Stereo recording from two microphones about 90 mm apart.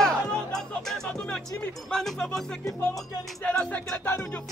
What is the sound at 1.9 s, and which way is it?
Speech, 5° left (ahead or behind).